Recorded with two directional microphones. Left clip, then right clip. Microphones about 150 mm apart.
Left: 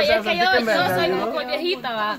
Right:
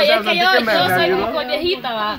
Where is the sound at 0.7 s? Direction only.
35° right (ahead or behind).